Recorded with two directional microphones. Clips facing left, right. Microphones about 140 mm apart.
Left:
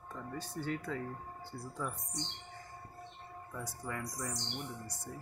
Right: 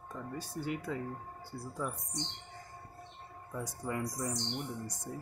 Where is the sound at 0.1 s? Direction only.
10° right (ahead or behind).